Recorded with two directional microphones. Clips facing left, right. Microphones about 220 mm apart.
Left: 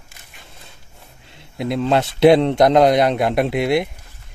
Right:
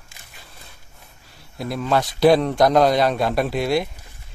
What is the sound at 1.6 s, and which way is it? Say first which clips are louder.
A man's voice: left 4 dB; 25° left (ahead or behind).